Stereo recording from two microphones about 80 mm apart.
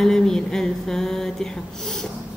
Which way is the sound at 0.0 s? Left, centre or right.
Centre.